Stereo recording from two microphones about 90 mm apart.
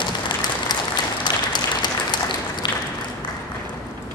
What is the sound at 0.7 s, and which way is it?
Applause, 50° left (ahead or behind).